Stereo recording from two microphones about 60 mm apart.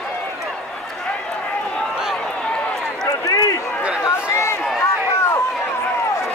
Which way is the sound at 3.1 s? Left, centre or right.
Left.